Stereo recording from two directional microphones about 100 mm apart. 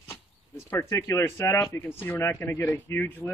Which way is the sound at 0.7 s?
25° left (ahead or behind).